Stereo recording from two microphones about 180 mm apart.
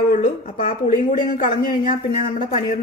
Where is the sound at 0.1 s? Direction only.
50° left (ahead or behind).